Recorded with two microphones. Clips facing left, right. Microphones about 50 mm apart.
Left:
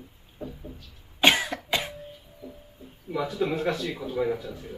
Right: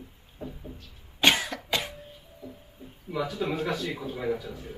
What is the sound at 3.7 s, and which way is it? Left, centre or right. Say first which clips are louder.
Speech: even; centre.